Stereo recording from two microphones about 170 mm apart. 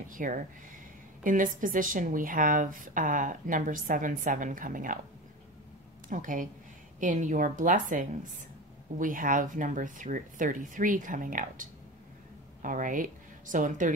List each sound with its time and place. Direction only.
0.1 s a woman's voice: 50° right (ahead or behind)
6.0 s a woman's voice: 50° right (ahead or behind)